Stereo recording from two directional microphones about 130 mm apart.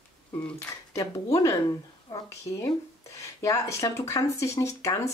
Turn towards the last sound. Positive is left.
turn(degrees=25)  # may be behind; listen again after turning